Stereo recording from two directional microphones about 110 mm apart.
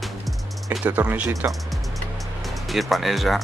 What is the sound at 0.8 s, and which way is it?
Speech, 15° right (ahead or behind).